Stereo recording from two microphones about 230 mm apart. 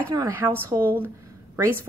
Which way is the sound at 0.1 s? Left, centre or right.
Centre.